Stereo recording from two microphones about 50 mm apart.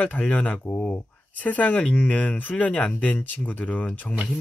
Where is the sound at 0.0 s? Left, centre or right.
Left.